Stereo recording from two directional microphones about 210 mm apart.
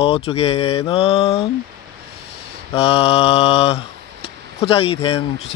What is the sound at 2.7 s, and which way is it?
Mantra, 30° left (ahead or behind).